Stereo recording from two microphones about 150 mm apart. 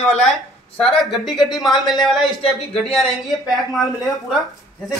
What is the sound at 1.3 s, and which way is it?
Speech, 30° left (ahead or behind).